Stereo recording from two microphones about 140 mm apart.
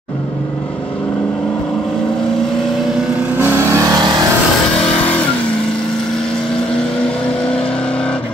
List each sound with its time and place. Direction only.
3.3 s vehicle: 15° right (ahead or behind)
4.0 s vehicle: 30° right (ahead or behind)